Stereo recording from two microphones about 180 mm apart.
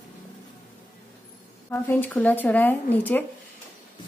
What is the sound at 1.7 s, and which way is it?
A woman's voice, 10° left (ahead or behind).